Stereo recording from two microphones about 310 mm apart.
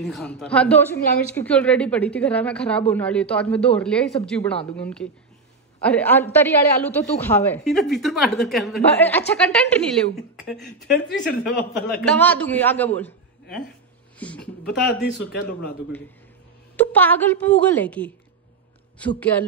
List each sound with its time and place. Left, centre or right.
0.0 s a man's voice: centre
11.5 s speech: left
12.0 s a man's voice: centre
14.7 s speech: left
16.7 s a man's voice: centre